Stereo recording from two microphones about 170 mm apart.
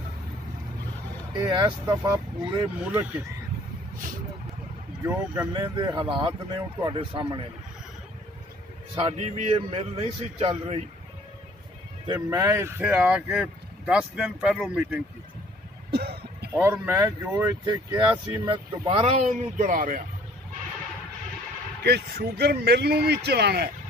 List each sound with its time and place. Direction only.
1.3 s speech: 20° right (ahead or behind)
2.8 s speech: 10° right (ahead or behind)
5.0 s speech: 10° right (ahead or behind)
5.5 s speech: 25° right (ahead or behind)
8.9 s a man's voice: 35° right (ahead or behind)
12.1 s speech: 20° right (ahead or behind)
15.9 s a sound: 70° right (ahead or behind)
16.5 s speech: 15° right (ahead or behind)
19.0 s speech: 45° right (ahead or behind)
21.8 s a man's voice: 70° right (ahead or behind)